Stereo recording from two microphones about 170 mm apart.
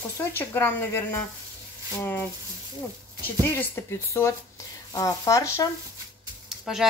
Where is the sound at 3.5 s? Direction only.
15° left (ahead or behind).